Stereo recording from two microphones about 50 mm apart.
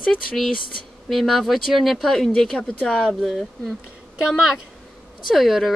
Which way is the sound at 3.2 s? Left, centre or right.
Centre.